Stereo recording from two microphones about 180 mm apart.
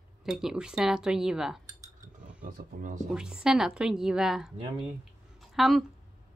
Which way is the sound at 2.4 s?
50° right (ahead or behind).